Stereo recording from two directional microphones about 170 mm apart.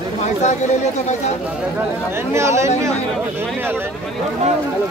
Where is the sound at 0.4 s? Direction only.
45° left (ahead or behind).